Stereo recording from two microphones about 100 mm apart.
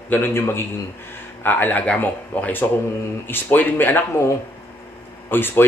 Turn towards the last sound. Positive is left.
turn(degrees=20)  # may be behind; listen again after turning